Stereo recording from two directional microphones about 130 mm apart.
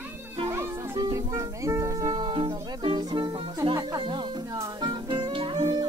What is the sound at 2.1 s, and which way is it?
Music, 40° right (ahead or behind).